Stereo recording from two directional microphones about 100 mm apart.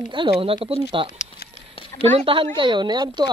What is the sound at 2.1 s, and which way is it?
A woman's voice, 65° right (ahead or behind).